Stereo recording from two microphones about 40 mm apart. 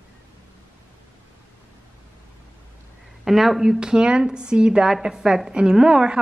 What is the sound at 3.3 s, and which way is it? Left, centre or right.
Speech, centre.